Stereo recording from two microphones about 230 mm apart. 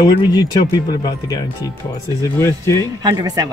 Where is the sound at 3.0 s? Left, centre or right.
Centre.